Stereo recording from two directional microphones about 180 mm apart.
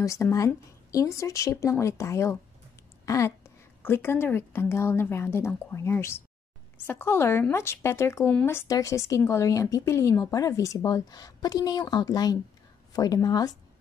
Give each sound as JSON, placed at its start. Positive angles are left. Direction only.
{"t": 0.0, "sound": "a woman's voice", "side_deg": 15}